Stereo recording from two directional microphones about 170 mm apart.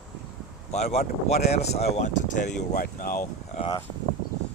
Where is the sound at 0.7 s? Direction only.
40° left (ahead or behind).